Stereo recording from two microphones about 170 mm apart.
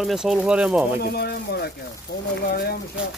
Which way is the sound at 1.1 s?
70° left (ahead or behind).